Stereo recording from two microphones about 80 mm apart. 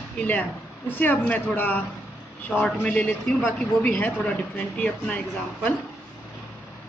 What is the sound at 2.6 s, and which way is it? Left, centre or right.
Speech, centre.